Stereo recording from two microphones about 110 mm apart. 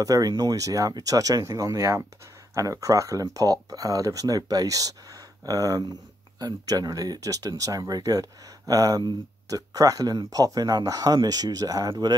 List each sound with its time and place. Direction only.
0.0 s speech: 30° right (ahead or behind)